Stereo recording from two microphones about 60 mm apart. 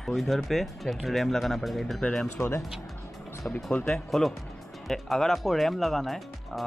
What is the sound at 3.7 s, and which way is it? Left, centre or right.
Speech, centre.